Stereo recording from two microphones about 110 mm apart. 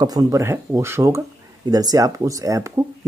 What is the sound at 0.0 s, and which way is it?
Speech, 35° right (ahead or behind).